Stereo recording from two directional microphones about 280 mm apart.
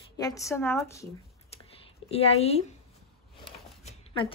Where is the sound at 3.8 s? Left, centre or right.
Left.